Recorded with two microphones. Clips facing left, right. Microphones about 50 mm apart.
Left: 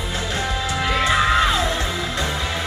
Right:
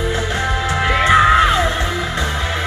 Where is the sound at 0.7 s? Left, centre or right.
Right.